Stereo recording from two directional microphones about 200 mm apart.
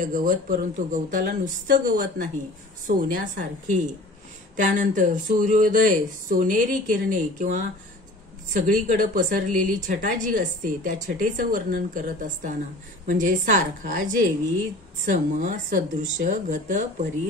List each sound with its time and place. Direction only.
0.0 s speech: 40° right (ahead or behind)